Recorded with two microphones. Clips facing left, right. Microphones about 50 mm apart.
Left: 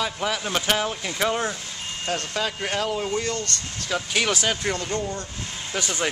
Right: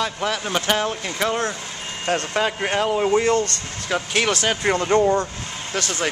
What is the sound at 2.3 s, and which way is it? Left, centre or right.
Speech, right.